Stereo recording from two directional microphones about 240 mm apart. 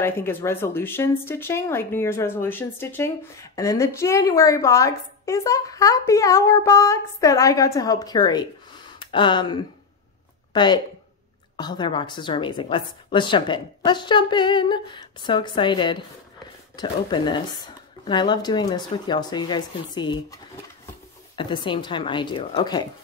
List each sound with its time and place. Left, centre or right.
0.0 s a woman's voice: centre
21.4 s a woman's voice: centre